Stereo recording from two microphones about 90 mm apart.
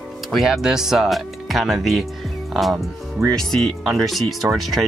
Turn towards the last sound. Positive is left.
turn(degrees=0)  # may be behind; listen again after turning